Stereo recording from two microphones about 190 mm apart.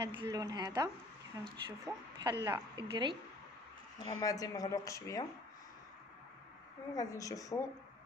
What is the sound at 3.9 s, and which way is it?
Speech, 20° left (ahead or behind).